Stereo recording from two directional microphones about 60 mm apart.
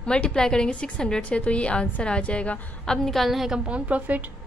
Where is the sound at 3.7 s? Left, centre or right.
Right.